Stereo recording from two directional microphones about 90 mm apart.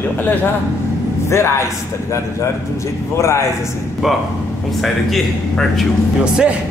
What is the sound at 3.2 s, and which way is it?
Speech, 30° left (ahead or behind).